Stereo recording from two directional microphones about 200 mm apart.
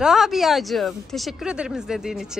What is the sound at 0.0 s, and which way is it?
A woman's voice, centre (ahead or behind).